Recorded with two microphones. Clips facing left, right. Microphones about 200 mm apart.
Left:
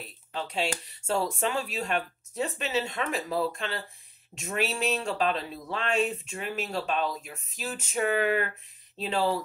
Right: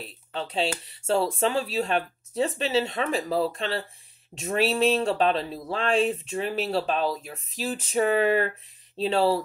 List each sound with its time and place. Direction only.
0.3 s speech: 30° right (ahead or behind)